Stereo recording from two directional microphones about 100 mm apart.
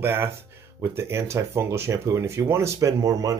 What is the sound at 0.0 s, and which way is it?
Speech, 25° right (ahead or behind).